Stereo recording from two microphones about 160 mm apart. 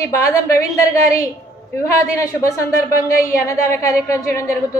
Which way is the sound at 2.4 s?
60° left (ahead or behind).